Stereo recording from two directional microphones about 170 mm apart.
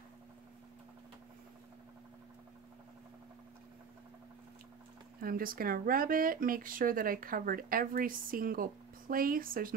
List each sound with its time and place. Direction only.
5.2 s speech: 55° right (ahead or behind)